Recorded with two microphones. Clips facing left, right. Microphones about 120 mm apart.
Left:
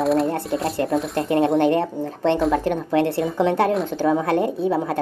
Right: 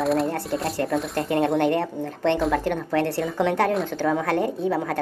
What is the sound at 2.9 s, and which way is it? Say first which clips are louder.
Speech: left 4 dB; 20° left (ahead or behind).